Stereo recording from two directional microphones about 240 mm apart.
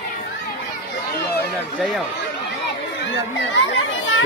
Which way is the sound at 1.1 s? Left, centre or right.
Left.